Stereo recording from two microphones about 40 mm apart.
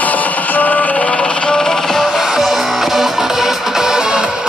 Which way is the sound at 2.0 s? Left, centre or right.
Centre.